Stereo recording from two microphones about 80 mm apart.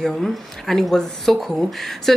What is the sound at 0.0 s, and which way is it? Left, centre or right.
A woman's voice, centre.